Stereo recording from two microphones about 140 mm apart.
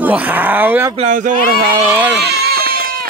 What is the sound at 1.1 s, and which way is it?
Speech, 65° right (ahead or behind).